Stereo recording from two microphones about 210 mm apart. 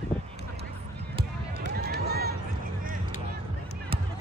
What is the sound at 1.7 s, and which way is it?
Run, 50° right (ahead or behind).